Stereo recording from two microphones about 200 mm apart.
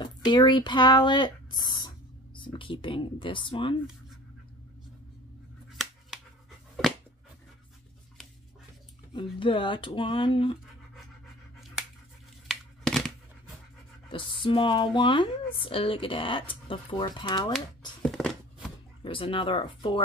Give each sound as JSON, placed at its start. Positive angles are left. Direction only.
{"t": 0.0, "sound": "speech", "side_deg": 20}
{"t": 5.7, "sound": "scissors", "side_deg": 0}
{"t": 9.1, "sound": "speech", "side_deg": 25}
{"t": 12.4, "sound": "a sound", "side_deg": 0}
{"t": 14.1, "sound": "speech", "side_deg": 25}
{"t": 18.0, "sound": "a sound", "side_deg": 0}
{"t": 19.0, "sound": "speech", "side_deg": 25}